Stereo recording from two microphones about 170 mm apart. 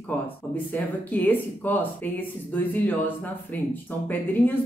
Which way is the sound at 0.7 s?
10° left (ahead or behind).